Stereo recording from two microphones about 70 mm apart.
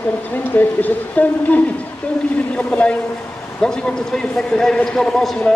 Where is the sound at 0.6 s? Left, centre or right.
Left.